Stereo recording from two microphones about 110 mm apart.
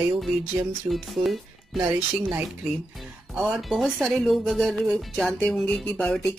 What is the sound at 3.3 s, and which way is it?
Speech, 5° right (ahead or behind).